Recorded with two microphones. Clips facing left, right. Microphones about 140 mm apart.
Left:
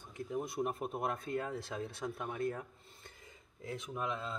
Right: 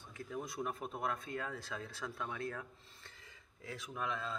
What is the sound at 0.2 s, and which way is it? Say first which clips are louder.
Speech: left 5 dB; 25° left (ahead or behind).